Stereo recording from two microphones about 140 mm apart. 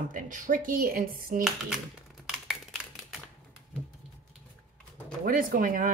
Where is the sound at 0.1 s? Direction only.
75° right (ahead or behind); by 1.4 s 90° right.